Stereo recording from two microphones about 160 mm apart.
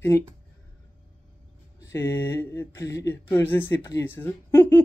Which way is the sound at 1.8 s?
15° left (ahead or behind).